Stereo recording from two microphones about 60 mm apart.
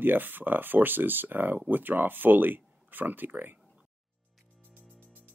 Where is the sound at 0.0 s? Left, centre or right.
Right.